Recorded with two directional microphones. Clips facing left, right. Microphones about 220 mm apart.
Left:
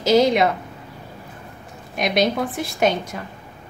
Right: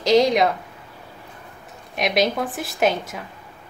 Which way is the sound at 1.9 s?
Centre (ahead or behind).